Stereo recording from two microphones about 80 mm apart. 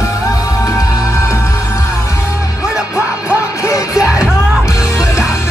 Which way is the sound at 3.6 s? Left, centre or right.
Left.